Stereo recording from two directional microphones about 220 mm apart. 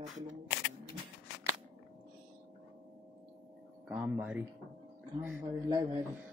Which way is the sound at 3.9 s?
5° right (ahead or behind).